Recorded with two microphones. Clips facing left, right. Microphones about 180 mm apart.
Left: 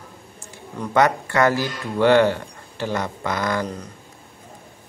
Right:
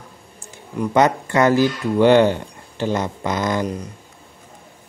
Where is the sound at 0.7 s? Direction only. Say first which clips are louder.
Right 2 dB; 20° right (ahead or behind).